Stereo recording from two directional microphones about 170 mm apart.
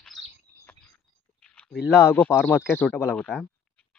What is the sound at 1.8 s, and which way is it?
Speech, 15° left (ahead or behind).